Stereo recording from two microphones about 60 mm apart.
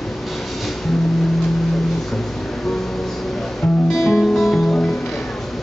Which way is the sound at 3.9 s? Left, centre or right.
Centre.